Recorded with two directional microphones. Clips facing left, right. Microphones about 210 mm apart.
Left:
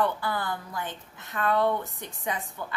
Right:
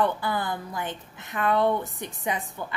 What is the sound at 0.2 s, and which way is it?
A woman's voice, 15° right (ahead or behind).